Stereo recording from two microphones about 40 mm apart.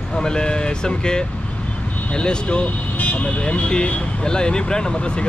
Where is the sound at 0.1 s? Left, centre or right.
Centre.